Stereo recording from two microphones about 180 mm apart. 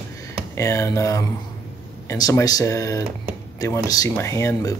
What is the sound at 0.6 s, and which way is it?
Speech, 15° left (ahead or behind).